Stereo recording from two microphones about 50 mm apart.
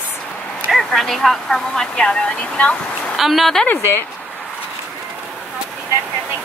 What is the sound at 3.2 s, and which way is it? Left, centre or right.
Speech, centre.